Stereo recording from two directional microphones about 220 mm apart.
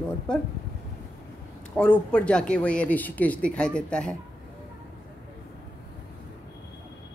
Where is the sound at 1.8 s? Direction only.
5° left (ahead or behind).